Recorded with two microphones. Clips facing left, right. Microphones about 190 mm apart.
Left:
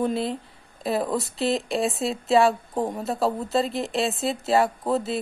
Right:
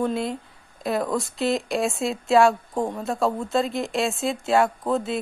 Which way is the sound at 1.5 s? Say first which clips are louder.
Even; centre (ahead or behind).